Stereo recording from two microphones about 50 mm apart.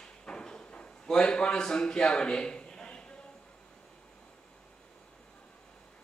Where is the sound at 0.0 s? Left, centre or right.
Centre.